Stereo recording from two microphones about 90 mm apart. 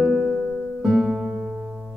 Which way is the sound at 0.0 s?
5° right (ahead or behind).